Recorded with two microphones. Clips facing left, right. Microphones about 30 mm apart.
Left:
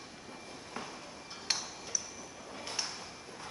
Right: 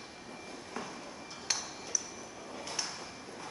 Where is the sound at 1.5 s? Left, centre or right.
Left.